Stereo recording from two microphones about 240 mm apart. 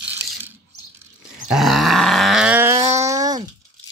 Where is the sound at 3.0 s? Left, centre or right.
Centre.